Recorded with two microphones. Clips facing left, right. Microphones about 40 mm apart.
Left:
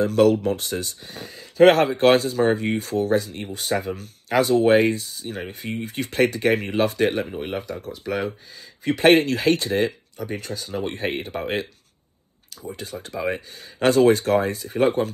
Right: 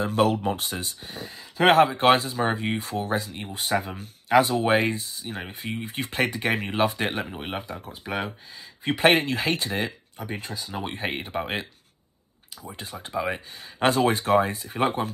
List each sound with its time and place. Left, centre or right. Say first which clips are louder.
0.0 s speech: left 5 dB; right
12.7 s speech: right 2 dB; right